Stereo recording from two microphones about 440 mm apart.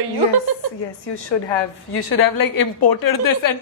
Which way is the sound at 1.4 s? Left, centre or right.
Left.